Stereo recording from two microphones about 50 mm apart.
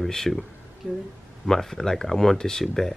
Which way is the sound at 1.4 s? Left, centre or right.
Centre.